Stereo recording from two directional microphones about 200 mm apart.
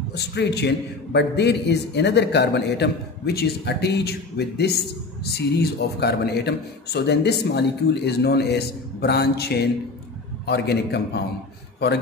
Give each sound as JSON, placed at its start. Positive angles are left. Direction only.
{"t": 0.1, "sound": "a man's voice", "side_deg": 55}